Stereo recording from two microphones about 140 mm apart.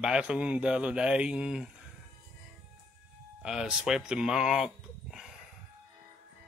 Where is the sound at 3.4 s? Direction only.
5° right (ahead or behind).